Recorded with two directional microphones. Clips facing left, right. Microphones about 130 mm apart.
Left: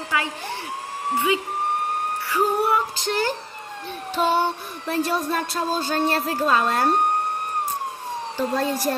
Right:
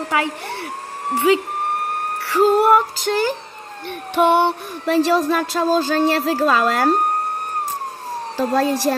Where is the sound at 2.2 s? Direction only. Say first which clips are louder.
Right 8 dB; 80° right.